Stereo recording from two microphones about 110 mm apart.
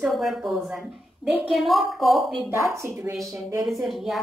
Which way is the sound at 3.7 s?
Centre (ahead or behind).